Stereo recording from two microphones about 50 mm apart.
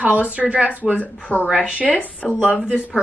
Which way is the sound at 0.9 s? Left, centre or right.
Left.